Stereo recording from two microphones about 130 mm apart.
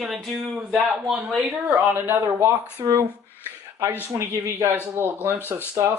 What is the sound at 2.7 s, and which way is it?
Speech, 30° right (ahead or behind).